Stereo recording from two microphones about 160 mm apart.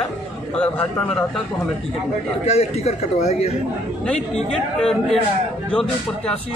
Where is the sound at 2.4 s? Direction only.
45° left (ahead or behind).